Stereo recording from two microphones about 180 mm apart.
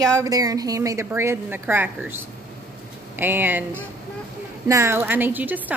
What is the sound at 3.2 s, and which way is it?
A woman's voice, 10° right (ahead or behind).